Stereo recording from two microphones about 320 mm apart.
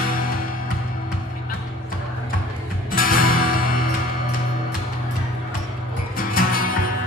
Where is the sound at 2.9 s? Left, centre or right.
Left.